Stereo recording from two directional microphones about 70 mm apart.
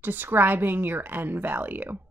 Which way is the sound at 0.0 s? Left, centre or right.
Right.